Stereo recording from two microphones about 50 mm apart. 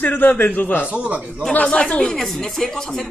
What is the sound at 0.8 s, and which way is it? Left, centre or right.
Speech, right.